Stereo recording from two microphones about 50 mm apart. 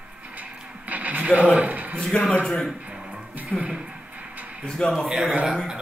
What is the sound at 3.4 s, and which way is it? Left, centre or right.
Speech, right.